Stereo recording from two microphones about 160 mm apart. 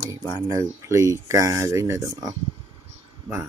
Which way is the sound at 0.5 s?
20° right (ahead or behind).